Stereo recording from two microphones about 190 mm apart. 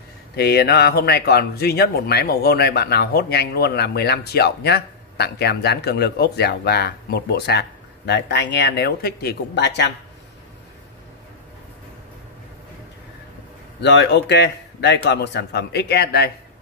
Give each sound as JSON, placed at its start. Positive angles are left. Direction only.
{"t": 0.4, "sound": "speech", "side_deg": 60}
{"t": 13.7, "sound": "speech", "side_deg": 65}